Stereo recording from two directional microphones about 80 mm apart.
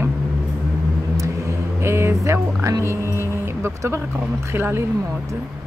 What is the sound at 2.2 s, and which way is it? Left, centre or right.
Speech, right.